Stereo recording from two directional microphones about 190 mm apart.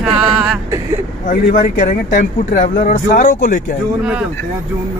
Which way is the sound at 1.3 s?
45° left (ahead or behind).